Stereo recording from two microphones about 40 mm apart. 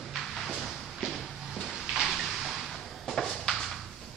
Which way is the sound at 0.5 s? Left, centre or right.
Centre.